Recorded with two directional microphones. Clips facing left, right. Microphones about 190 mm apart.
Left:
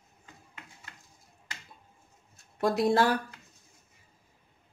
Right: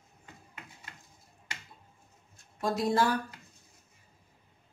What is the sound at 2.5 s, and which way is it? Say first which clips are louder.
Speech: left 3 dB; 65° left (ahead or behind).